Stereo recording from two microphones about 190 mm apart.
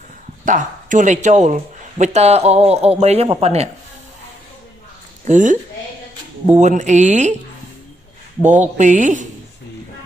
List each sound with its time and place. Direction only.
0.5 s speech: 45° right (ahead or behind)
5.2 s speech: 40° right (ahead or behind)
8.5 s speech: 40° right (ahead or behind)